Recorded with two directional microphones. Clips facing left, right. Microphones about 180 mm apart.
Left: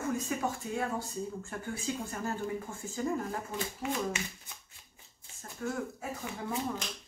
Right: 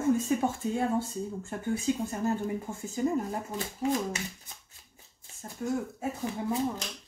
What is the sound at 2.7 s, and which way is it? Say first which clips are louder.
Speech: right 5 dB; 20° right (ahead or behind).